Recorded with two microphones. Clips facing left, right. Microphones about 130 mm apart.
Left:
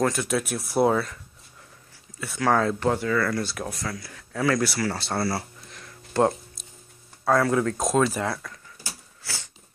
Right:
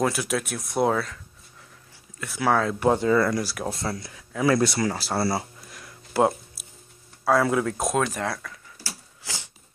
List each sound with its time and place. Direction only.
0.0 s speech: 5° right (ahead or behind)
2.8 s speech: 20° right (ahead or behind)
4.9 s speech: 5° right (ahead or behind)
5.2 s speech: 20° right (ahead or behind)
5.7 s a sound: 5° right (ahead or behind)
7.2 s speech: 5° right (ahead or behind)
9.2 s a sound: 15° right (ahead or behind)